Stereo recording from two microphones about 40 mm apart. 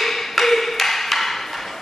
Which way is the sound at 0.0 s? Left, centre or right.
Centre.